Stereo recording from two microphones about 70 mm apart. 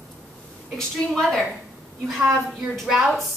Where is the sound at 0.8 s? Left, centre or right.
Centre.